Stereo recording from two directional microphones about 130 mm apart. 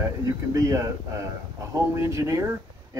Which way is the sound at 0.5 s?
25° right (ahead or behind).